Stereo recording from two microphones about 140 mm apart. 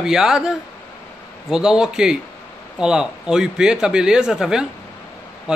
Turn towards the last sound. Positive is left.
turn(degrees=-5)  # may be behind; listen again after turning